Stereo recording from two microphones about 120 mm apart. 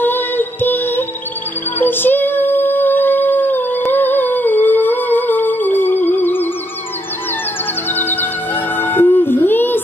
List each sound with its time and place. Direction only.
0.0 s music: 15° left (ahead or behind)
7.9 s music: 15° left (ahead or behind)